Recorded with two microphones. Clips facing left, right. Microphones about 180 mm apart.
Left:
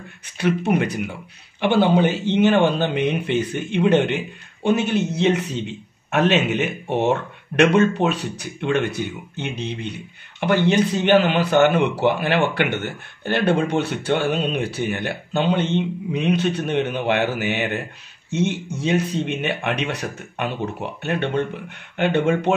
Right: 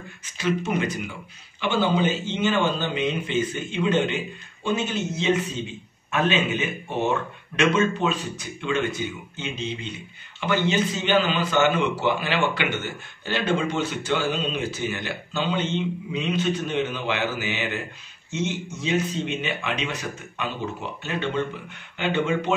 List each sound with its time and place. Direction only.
0.4 s a man's voice: 65° left (ahead or behind)